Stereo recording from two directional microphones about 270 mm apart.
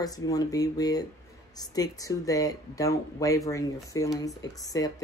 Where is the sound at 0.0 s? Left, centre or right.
Centre.